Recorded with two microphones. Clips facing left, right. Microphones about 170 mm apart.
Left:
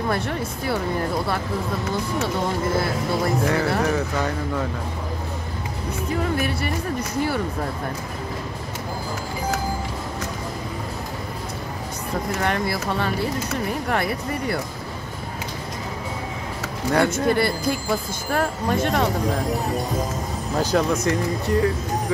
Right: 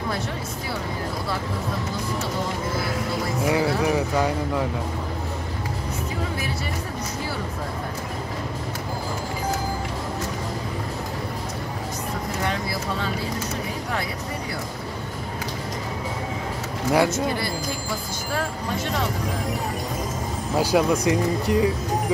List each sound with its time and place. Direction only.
3.4 s speech: 10° right (ahead or behind)
6.3 s speech: 60° left (ahead or behind)
12.4 s speech: 60° left (ahead or behind)
17.1 s speech: 55° left (ahead or behind)
20.5 s speech: 10° right (ahead or behind)